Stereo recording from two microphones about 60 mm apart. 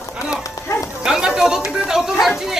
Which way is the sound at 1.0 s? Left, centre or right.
Centre.